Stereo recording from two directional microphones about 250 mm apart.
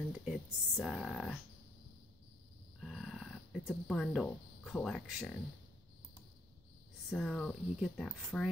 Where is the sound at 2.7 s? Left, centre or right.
Centre.